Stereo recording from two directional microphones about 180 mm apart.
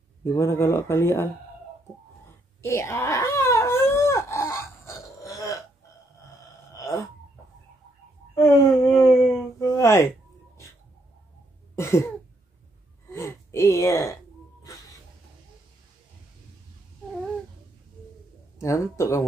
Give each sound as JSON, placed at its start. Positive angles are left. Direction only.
{"t": 0.2, "sound": "speech", "side_deg": 15}
{"t": 2.6, "sound": "wail", "side_deg": 15}
{"t": 6.7, "sound": "dog", "side_deg": 20}
{"t": 8.4, "sound": "a sound", "side_deg": 15}
{"t": 11.7, "sound": "cough", "side_deg": 15}
{"t": 13.1, "sound": "gasp", "side_deg": 15}
{"t": 18.6, "sound": "speech", "side_deg": 15}